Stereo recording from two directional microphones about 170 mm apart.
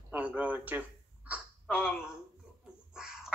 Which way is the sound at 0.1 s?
10° right (ahead or behind).